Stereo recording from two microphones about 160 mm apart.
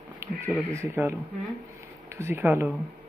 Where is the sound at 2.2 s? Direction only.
15° right (ahead or behind).